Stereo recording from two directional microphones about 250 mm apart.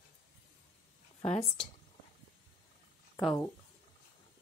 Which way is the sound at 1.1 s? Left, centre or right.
Left.